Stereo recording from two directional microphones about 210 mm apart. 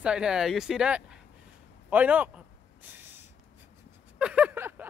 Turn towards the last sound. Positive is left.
turn(degrees=-10)  # may be behind; listen again after turning